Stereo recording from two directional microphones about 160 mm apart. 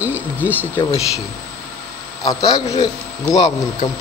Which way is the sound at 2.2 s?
25° left (ahead or behind).